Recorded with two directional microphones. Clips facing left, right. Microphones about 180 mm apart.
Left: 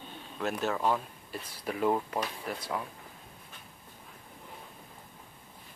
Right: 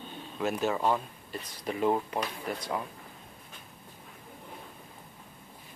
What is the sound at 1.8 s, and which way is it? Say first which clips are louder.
Speech: right 1 dB; 5° right (ahead or behind).